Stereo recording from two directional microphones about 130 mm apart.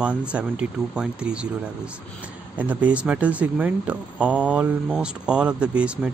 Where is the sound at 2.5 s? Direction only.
10° right (ahead or behind).